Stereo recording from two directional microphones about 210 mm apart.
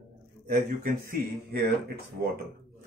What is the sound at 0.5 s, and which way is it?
Speech, 45° right (ahead or behind).